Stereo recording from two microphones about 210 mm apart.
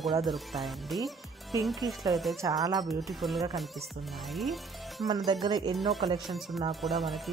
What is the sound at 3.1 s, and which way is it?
Speech, centre (ahead or behind).